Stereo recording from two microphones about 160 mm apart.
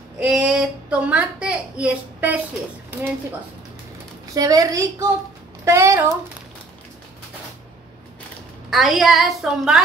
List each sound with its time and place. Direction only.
0.2 s a child's voice: 5° right (ahead or behind)
4.3 s speech: 20° right (ahead or behind)
8.6 s a woman's voice: centre (ahead or behind)